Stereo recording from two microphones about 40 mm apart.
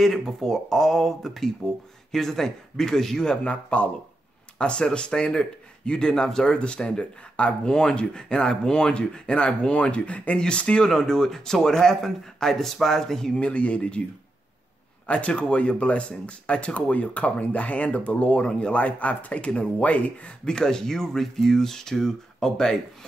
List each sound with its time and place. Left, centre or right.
0.0 s speech: centre
3.4 s speech: left
4.6 s speech: left
10.9 s speech: centre
13.4 s speech: left
15.0 s speech: left
20.4 s speech: centre